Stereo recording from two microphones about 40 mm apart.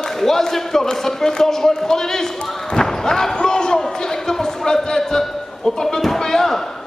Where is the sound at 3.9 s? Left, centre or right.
Centre.